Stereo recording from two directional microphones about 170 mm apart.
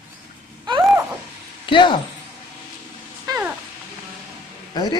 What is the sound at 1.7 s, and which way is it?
Speech, 30° left (ahead or behind).